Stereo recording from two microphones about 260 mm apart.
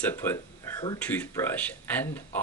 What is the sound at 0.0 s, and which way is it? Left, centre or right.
Speech, centre.